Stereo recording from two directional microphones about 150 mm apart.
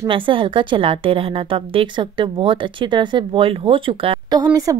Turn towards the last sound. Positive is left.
turn(degrees=-20)  # may be behind; listen again after turning